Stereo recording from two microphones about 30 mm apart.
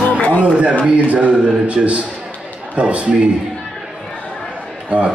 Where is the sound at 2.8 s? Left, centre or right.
Right.